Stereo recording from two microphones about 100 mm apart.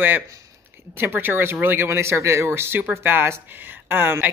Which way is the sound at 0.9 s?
20° right (ahead or behind).